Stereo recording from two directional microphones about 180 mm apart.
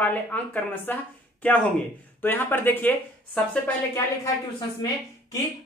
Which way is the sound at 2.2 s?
10° left (ahead or behind).